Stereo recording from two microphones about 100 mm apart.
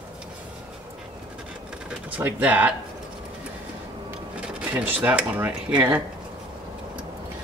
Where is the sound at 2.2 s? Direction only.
15° right (ahead or behind).